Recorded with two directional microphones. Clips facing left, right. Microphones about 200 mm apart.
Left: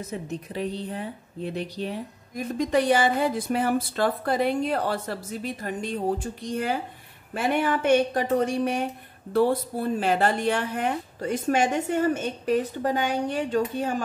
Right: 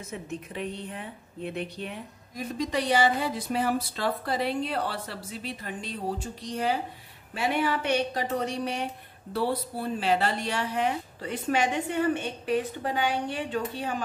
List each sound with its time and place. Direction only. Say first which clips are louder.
0.0 s a woman's voice: left 4 dB; 35° left (ahead or behind)
2.3 s speech: left 6 dB; 50° left (ahead or behind)